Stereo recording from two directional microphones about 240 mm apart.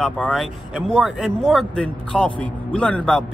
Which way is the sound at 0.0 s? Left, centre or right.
Centre.